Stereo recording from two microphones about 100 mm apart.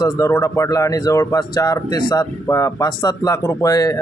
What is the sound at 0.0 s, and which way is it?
Speech, 30° left (ahead or behind).